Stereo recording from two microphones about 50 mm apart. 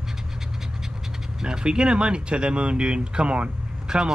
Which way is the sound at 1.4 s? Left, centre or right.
Centre.